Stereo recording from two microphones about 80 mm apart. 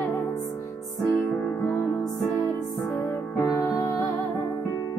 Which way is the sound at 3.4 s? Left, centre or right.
Left.